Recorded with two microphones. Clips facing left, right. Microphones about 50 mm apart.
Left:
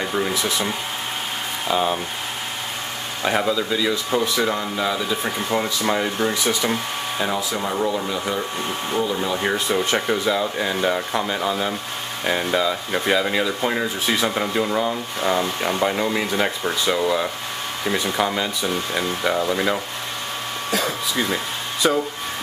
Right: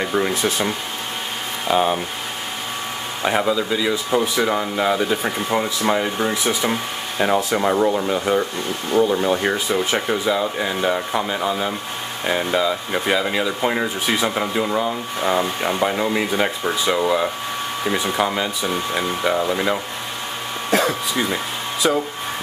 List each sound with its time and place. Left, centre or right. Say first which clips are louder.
0.0 s a sound: right 3 dB; centre
0.3 s speech: right 2 dB; right
1.7 s speech: right 3 dB; centre
3.2 s speech: right 1 dB; centre
5.2 s speech: right 2 dB; centre
7.5 s speech: right 5 dB; right
9.4 s speech: right 1 dB; centre
20.7 s a sound: right 5 dB; right
21.8 s speech: even; centre